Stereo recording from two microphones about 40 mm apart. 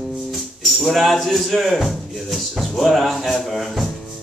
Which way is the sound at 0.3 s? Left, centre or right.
Centre.